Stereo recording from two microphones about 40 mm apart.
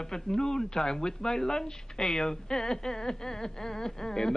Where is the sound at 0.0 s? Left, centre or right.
Centre.